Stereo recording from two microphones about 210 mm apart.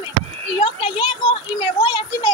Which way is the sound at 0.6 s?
25° left (ahead or behind).